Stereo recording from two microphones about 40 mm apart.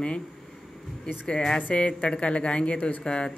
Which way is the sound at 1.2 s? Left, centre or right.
Left.